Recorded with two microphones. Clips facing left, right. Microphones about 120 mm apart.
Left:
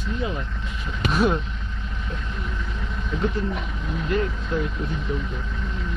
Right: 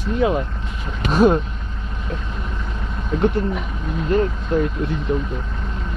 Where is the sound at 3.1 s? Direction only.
50° right (ahead or behind).